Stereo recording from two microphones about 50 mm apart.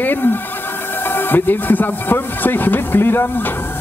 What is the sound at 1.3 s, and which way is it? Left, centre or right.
Speech, left.